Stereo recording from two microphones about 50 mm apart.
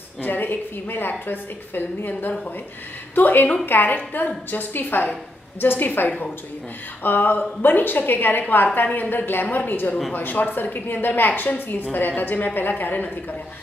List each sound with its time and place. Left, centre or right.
0.2 s a woman's voice: left
7.0 s a woman's voice: left